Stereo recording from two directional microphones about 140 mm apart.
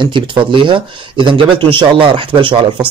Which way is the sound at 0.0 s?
35° right (ahead or behind).